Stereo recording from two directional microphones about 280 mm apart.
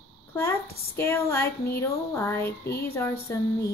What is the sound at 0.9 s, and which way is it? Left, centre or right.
Speech, centre.